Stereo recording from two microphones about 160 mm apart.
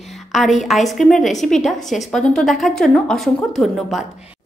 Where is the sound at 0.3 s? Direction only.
Centre (ahead or behind).